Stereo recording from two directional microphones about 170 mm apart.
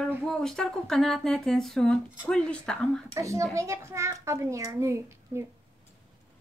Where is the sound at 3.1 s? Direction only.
20° right (ahead or behind).